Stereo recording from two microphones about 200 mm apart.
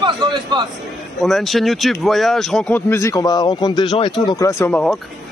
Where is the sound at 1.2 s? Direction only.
Centre (ahead or behind).